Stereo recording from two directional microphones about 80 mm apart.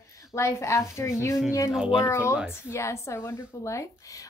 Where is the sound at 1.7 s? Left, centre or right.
Centre.